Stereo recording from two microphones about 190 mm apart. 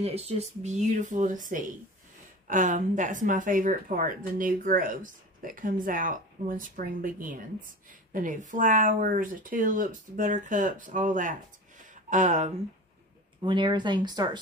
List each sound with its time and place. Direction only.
0.0 s speech: 35° right (ahead or behind)
13.4 s speech: 25° right (ahead or behind)